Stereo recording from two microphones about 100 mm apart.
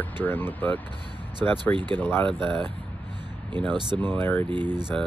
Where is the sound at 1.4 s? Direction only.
10° left (ahead or behind).